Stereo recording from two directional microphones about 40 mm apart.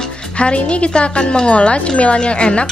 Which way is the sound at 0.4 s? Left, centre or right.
Left.